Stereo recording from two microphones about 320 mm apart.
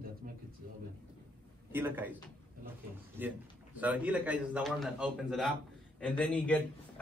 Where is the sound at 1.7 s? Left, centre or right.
Centre.